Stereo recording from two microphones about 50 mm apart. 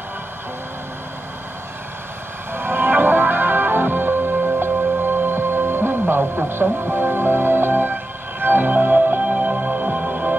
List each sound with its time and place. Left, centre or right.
2.5 s music: right